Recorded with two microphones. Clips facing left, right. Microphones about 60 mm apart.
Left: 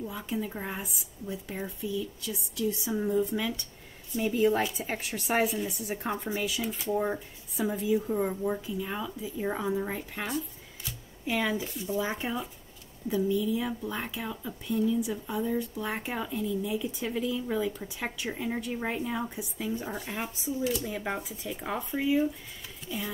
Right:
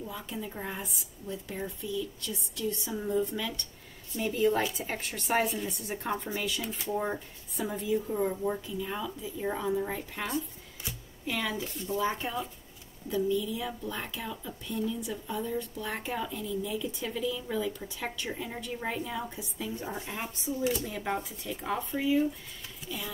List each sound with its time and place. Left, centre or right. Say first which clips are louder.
0.0 s speech: left 4 dB; centre
2.9 s a woman's voice: left 2 dB; centre
6.0 s speech: left 1 dB; centre
17.1 s speech: left 3 dB; left
19.2 s a woman's voice: left 3 dB; centre
22.8 s speech: left 3 dB; left